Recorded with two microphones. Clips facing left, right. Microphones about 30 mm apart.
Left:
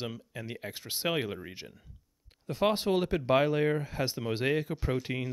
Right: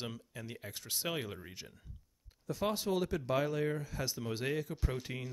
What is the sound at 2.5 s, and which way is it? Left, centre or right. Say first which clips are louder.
Speech: left 7 dB; left.